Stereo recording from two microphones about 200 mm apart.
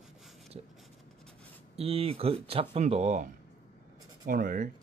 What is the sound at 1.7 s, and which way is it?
Speech, 30° right (ahead or behind).